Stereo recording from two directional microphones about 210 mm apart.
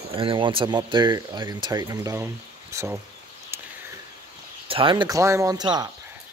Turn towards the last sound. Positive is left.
turn(degrees=-20)  # may be behind; listen again after turning